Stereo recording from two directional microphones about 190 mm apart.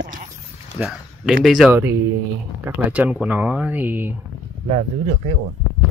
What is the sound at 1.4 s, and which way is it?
Speech, centre (ahead or behind).